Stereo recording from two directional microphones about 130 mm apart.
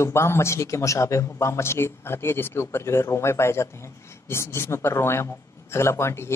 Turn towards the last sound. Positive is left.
turn(degrees=20)  # may be behind; listen again after turning